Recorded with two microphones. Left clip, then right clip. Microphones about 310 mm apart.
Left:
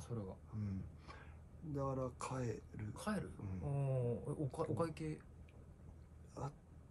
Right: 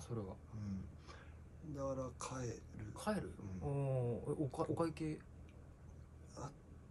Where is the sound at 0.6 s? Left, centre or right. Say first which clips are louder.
Left 1 dB; left.